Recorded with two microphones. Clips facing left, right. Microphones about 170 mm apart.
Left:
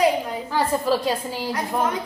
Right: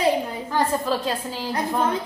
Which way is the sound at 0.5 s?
10° left (ahead or behind).